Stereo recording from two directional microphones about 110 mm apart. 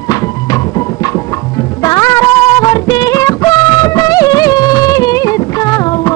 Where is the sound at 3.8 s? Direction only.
35° left (ahead or behind).